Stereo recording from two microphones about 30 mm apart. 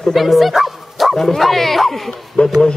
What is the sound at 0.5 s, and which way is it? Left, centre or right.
Bow-wow, centre.